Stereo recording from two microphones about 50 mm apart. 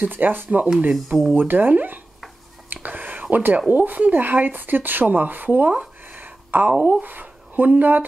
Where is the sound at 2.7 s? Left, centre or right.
Right.